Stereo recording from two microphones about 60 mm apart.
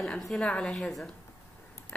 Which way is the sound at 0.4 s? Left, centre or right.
Centre.